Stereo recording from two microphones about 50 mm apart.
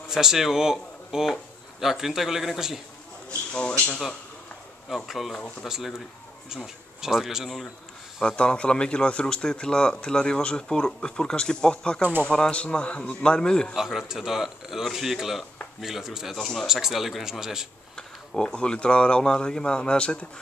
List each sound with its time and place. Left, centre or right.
0.1 s speech: centre
3.3 s speech: left
4.8 s speech: centre
8.4 s speech: left
13.7 s speech: centre
17.9 s speech: centre